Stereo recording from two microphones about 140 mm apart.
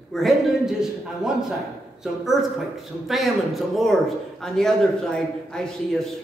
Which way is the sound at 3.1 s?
Centre (ahead or behind).